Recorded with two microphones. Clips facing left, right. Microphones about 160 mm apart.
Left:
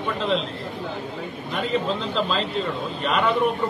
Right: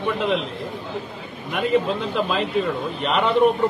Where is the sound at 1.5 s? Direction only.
15° right (ahead or behind).